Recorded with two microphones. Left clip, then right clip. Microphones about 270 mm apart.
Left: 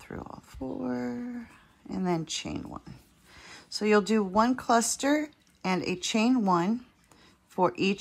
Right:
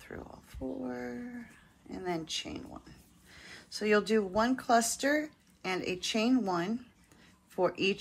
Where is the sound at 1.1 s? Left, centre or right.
Left.